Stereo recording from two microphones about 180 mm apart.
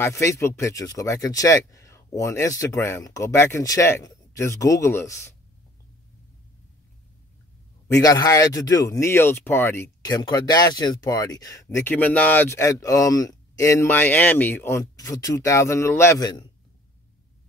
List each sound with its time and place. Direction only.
0.0 s speech: 15° left (ahead or behind)
8.0 s speech: 20° left (ahead or behind)